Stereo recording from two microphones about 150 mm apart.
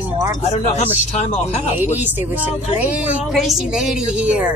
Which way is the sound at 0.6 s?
45° left (ahead or behind).